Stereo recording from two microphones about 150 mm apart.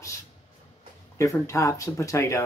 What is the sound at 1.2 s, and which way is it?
Speech, 20° left (ahead or behind).